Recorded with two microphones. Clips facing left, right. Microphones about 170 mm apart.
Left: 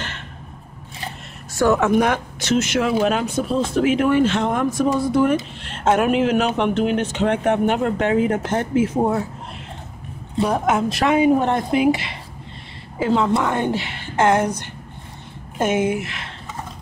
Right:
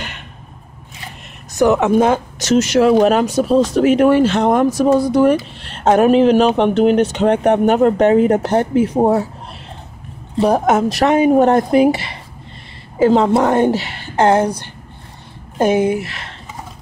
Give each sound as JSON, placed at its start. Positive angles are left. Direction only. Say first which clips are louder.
{"t": 1.5, "sound": "speech", "louder": "right 4 dB", "side_deg": -20}
{"t": 2.3, "sound": "speech", "louder": "right 6 dB", "side_deg": -40}
{"t": 10.4, "sound": "speech", "louder": "right 5 dB", "side_deg": -35}